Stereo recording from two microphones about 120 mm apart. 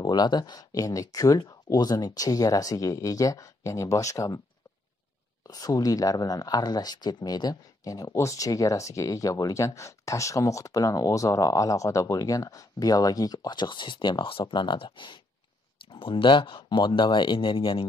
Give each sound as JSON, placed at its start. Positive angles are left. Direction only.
{"t": 0.0, "sound": "speech", "side_deg": 35}
{"t": 5.5, "sound": "speech", "side_deg": 30}